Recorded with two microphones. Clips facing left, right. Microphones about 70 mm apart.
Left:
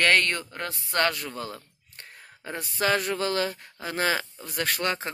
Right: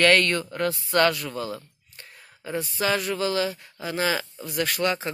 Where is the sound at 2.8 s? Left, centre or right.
Left.